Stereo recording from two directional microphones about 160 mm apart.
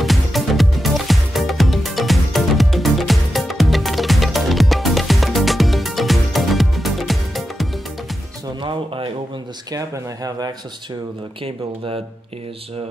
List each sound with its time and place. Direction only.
0.0 s music: centre (ahead or behind)
8.6 s a sound: 35° right (ahead or behind)
9.7 s speech: 25° right (ahead or behind)
11.4 s speech: 35° right (ahead or behind)